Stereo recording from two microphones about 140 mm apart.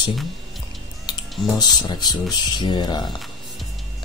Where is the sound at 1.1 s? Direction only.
30° left (ahead or behind).